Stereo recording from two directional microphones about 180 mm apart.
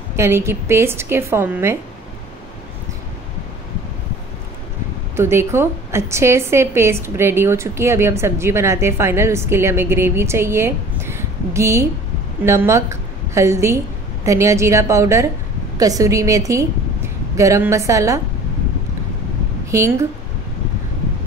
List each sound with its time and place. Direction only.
0.1 s a woman's voice: 15° right (ahead or behind)
5.1 s a woman's voice: 15° right (ahead or behind)
19.6 s a woman's voice: 15° right (ahead or behind)